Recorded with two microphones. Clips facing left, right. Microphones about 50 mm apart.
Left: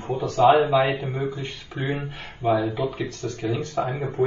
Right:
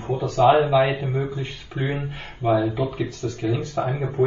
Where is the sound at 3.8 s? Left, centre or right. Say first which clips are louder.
Right 1 dB; right.